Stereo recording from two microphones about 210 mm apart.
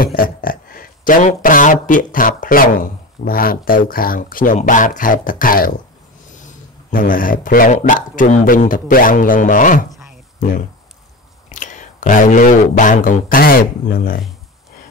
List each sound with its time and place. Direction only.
0.0 s speech: 45° left (ahead or behind)
9.8 s a sound: centre (ahead or behind)
11.4 s speech: 35° left (ahead or behind)